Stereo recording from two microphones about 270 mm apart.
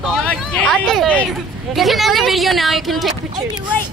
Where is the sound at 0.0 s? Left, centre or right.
Centre.